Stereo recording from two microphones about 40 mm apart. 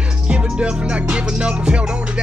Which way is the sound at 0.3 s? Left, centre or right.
Right.